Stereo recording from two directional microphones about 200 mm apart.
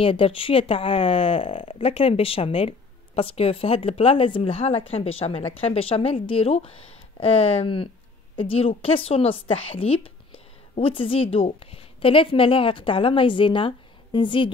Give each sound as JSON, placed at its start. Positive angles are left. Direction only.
{"t": 0.0, "sound": "a woman's voice", "side_deg": 25}